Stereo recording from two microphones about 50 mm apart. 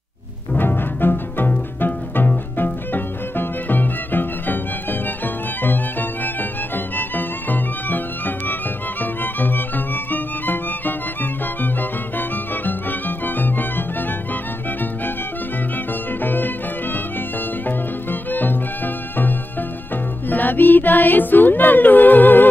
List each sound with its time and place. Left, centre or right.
0.6 s bowed string instrument: left
1.8 s music: left
9.0 s music: left
13.2 s music: left
16.2 s music: left
18.3 s music: left
20.2 s music: left